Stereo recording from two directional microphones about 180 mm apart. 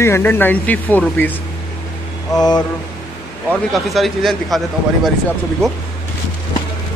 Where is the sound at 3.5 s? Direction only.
Centre (ahead or behind).